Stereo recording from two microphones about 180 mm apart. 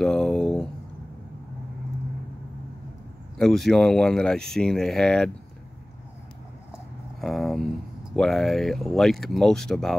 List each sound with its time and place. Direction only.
0.0 s a sound: 5° left (ahead or behind)
3.3 s speech: centre (ahead or behind)
7.2 s speech: centre (ahead or behind)